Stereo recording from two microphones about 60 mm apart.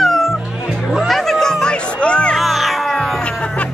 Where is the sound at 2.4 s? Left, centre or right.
Centre.